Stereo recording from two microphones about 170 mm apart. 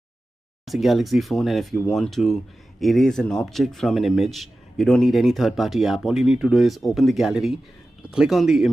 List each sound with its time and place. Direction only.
0.7 s speech: centre (ahead or behind)